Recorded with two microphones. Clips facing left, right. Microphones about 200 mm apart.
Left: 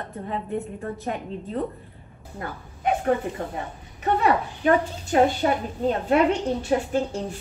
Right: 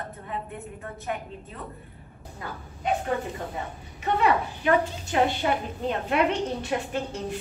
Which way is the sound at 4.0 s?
40° left (ahead or behind).